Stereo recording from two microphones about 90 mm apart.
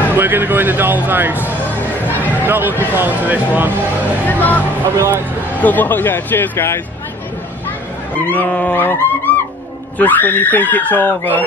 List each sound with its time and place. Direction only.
0.1 s speech: 20° right (ahead or behind)
1.8 s speech: 20° left (ahead or behind)
2.4 s speech: 20° right (ahead or behind)
4.3 s speech: 20° left (ahead or behind)
8.3 s dog: 15° left (ahead or behind)
9.9 s speech: 20° left (ahead or behind)